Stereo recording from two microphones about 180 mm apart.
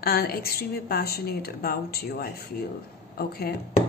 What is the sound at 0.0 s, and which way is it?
A woman's voice, 60° left (ahead or behind).